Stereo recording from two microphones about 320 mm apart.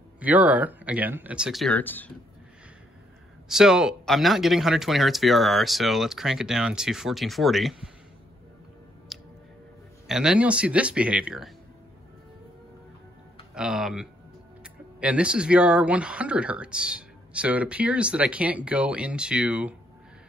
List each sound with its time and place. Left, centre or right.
0.2 s speech: centre
3.4 s speech: centre
9.1 s music: centre
10.0 s speech: centre
13.6 s speech: centre